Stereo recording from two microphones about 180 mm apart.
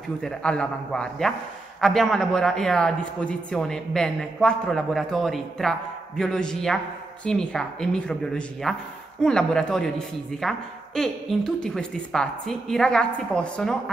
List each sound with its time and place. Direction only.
0.2 s a man's voice: 5° left (ahead or behind)